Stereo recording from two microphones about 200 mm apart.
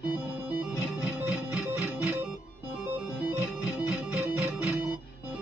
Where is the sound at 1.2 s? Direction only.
5° right (ahead or behind).